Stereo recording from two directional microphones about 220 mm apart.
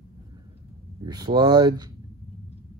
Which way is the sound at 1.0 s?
20° right (ahead or behind).